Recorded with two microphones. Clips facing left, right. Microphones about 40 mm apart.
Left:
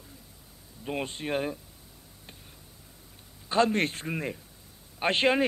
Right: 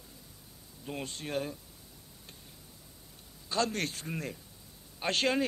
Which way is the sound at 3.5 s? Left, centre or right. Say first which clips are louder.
Left 7 dB; left.